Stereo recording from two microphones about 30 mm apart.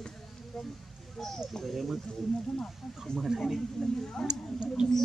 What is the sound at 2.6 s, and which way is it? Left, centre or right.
Speech, left.